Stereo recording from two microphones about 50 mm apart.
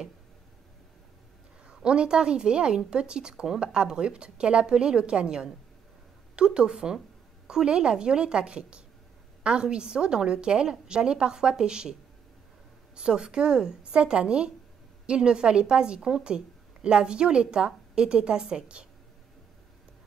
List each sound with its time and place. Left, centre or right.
1.7 s a woman's voice: centre
12.9 s a woman's voice: centre